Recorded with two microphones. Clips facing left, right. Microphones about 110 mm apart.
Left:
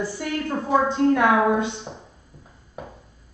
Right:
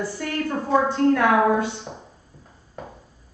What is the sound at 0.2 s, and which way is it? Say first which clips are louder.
A woman's voice: right 1 dB; 15° left (ahead or behind).